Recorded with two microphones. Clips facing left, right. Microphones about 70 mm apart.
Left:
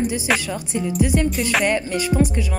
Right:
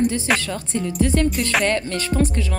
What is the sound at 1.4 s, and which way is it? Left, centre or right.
Music, centre.